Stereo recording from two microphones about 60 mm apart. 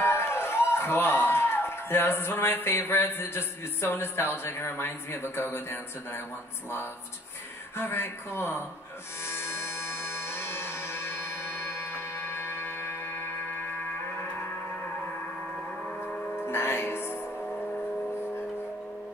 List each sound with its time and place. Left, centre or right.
0.0 s a sound: left
0.7 s a man's voice: left
7.7 s a man's voice: left
9.2 s music: left
16.3 s music: left